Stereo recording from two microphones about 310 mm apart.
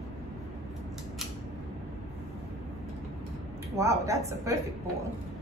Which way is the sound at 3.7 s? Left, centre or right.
Centre.